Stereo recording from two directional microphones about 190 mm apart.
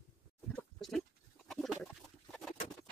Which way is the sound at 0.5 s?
5° left (ahead or behind).